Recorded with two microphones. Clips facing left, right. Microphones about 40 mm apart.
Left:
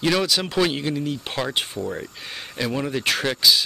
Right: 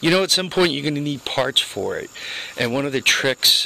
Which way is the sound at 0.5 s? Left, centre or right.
Right.